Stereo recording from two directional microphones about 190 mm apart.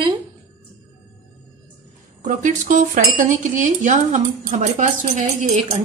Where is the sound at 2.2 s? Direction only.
40° right (ahead or behind).